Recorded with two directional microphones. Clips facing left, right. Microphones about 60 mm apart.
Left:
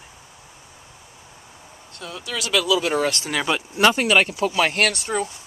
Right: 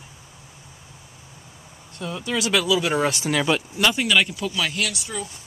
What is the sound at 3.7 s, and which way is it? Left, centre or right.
Speech, left.